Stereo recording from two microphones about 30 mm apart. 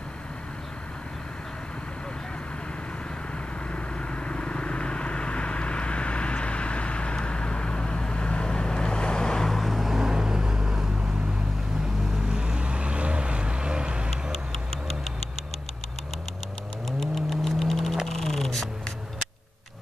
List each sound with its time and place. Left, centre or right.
3.7 s vehicle: left
9.5 s vehicle: centre
9.8 s vehicle: centre; by 14.1 s right
17.0 s typing: centre
18.1 s music: centre